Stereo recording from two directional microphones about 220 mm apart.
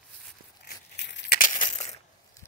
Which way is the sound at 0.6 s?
50° left (ahead or behind).